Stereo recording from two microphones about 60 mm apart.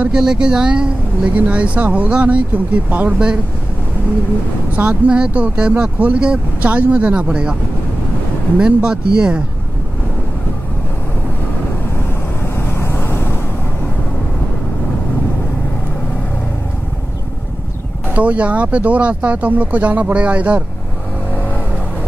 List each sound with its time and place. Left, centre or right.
0.1 s speech: centre
4.7 s speech: right
8.5 s speech: centre
12.5 s vehicle: left
18.1 s speech: right